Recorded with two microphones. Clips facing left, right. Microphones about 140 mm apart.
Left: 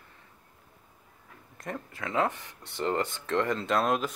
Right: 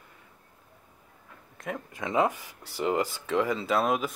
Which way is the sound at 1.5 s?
5° right (ahead or behind).